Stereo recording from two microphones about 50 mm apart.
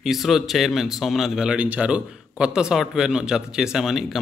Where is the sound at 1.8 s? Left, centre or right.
Centre.